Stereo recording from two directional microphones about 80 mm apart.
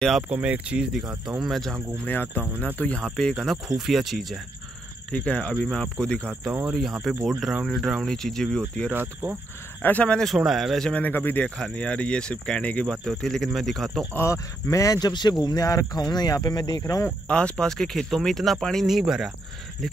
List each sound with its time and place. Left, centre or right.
0.3 s speech: centre
1.4 s speech: centre
2.0 s speech: left; by 3.5 s centre
3.6 s speech: centre
5.1 s speech: centre
6.7 s speech: centre
8.9 s speech: right
9.8 s speech: left
10.2 s speech: centre
10.9 s speech: left
11.4 s speech: centre
14.1 s speech: left
15.0 s speech: left
17.3 s speech: centre